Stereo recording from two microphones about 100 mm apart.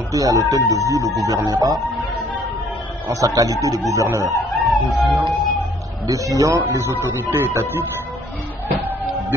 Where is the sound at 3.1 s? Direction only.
35° right (ahead or behind).